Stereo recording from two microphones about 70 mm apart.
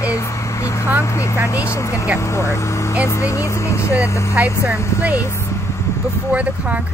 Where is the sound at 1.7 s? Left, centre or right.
Left.